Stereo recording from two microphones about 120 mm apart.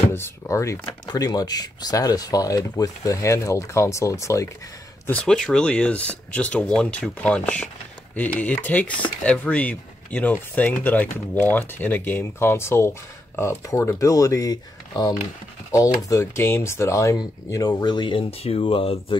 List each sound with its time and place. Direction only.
0.1 s speech: 25° left (ahead or behind)
5.0 s speech: 10° left (ahead or behind); by 19.1 s 45° left (ahead or behind)